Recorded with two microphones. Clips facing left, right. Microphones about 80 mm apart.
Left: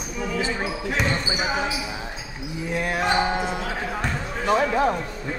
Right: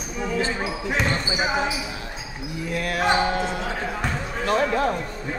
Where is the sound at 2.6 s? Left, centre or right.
Left.